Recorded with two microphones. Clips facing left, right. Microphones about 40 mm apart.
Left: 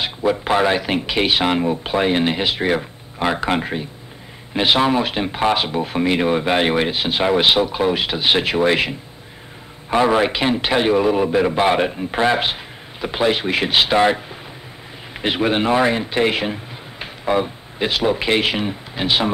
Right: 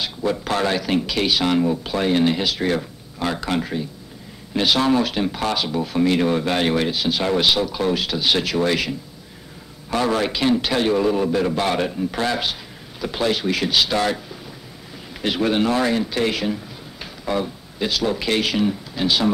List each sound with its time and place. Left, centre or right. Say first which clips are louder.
0.0 s speech: left 4 dB; left